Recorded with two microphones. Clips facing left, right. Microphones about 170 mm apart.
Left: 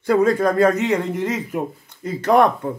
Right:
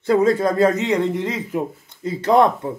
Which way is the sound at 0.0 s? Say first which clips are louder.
Even; 25° right (ahead or behind).